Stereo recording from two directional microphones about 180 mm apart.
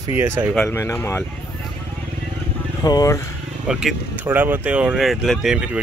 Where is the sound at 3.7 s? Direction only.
5° right (ahead or behind).